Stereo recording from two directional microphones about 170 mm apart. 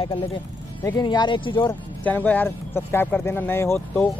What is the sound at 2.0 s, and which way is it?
Speech, 10° left (ahead or behind).